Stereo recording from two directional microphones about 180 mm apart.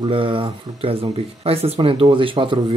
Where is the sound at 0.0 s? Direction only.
30° right (ahead or behind).